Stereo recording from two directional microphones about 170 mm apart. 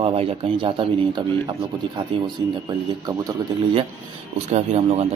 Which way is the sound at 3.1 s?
20° right (ahead or behind).